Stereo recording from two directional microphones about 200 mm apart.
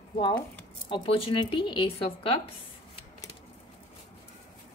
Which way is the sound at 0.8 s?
25° left (ahead or behind).